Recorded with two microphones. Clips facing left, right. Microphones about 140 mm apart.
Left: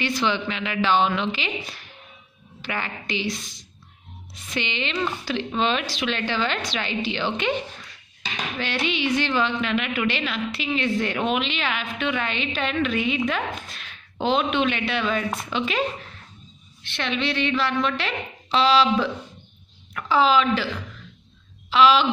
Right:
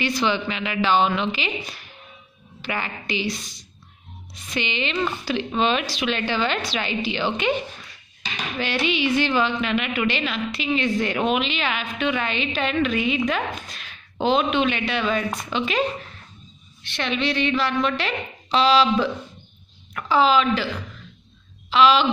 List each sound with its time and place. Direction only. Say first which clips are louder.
0.0 s a woman's voice: right 1 dB; 5° right (ahead or behind)
4.6 s a woman's voice: right 2 dB; 5° right (ahead or behind)
8.5 s a woman's voice: right 3 dB; 10° right (ahead or behind)
16.8 s a woman's voice: right 2 dB; centre (ahead or behind)
21.6 s speech: even; 5° left (ahead or behind)